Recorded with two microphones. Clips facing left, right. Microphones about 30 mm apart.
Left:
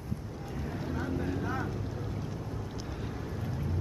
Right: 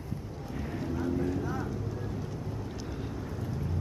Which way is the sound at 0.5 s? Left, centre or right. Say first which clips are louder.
Right 2 dB; centre.